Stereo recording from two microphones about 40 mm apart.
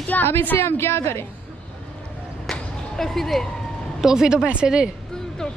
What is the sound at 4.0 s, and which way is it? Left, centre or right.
Speech, centre.